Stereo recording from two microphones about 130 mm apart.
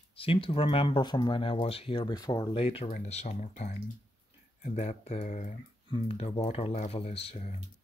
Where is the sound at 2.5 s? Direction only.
45° left (ahead or behind).